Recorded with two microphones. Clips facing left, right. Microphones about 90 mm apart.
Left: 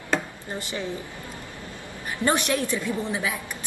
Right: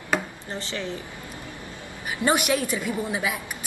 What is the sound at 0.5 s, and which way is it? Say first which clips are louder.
Speech: left 1 dB; 15° left (ahead or behind).